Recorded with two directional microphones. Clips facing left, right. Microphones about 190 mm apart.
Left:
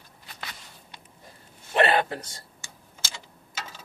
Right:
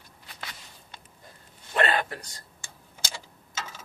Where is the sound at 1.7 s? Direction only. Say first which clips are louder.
Left 4 dB; 25° left (ahead or behind).